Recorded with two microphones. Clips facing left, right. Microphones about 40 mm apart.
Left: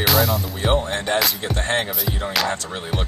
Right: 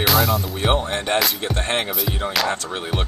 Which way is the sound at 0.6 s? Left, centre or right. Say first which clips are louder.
Left 2 dB; centre.